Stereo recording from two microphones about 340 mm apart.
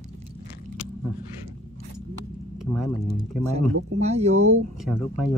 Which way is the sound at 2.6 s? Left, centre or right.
Centre.